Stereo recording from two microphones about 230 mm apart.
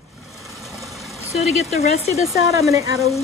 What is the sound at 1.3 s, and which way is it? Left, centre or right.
Speech, left.